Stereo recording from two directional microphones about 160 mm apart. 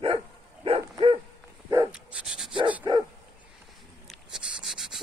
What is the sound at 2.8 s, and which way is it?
Dog, 25° right (ahead or behind).